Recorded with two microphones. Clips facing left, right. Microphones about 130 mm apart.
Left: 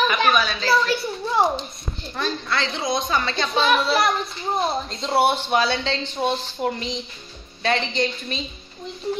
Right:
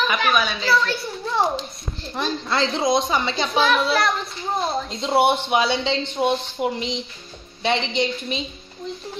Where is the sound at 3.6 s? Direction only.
5° left (ahead or behind).